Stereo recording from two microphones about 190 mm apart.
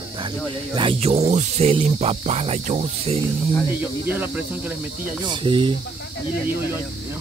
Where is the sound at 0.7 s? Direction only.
30° right (ahead or behind).